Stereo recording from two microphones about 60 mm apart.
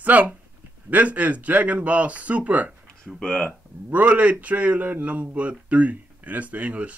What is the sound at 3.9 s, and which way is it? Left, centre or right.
Speech, right.